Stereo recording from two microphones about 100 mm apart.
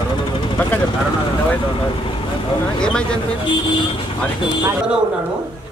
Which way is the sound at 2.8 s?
10° left (ahead or behind).